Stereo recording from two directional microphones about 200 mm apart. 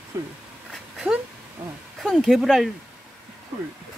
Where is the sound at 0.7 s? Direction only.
Centre (ahead or behind).